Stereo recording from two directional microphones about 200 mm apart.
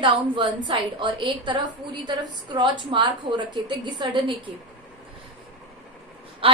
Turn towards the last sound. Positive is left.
turn(degrees=-25)  # may be behind; listen again after turning